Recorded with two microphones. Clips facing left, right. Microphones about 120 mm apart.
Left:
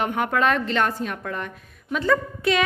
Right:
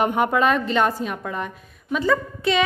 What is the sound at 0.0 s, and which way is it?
A woman's voice, 15° right (ahead or behind).